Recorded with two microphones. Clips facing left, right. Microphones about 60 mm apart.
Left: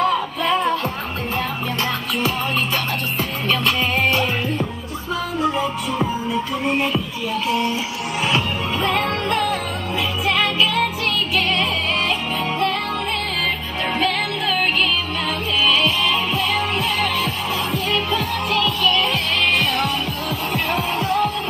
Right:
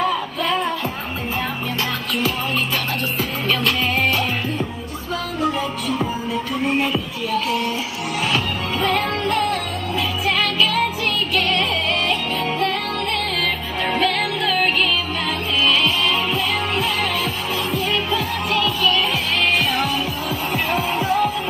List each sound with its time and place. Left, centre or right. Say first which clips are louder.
0.0 s music: left 2 dB; centre
3.2 s music: left 1 dB; centre
5.4 s music: left 1 dB; centre
5.9 s music: left 1 dB; centre
8.7 s music: right 1 dB; centre
13.8 s music: right 1 dB; centre
20.5 s music: right 1 dB; centre